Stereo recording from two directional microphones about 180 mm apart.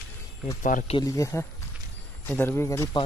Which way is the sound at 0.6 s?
45° left (ahead or behind).